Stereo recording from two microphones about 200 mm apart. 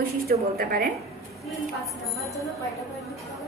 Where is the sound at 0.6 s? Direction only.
50° right (ahead or behind).